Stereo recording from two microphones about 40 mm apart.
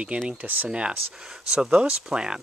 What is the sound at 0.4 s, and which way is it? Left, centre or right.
Speech, right.